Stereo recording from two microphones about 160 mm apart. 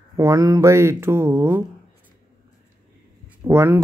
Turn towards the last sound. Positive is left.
turn(degrees=-15)  # may be behind; listen again after turning